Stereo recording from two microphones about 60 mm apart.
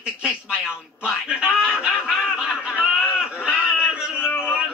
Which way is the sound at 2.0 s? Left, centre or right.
Centre.